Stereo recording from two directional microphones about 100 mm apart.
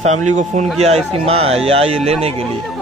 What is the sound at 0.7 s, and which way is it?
Speech, 90° right.